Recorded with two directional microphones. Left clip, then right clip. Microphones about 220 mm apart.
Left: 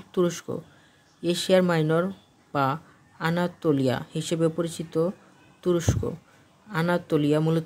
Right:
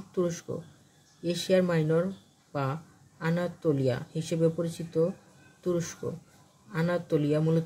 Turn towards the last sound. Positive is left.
turn(degrees=35)  # may be behind; listen again after turning